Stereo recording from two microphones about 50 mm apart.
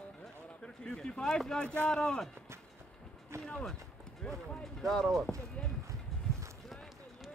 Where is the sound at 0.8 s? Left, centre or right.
Centre.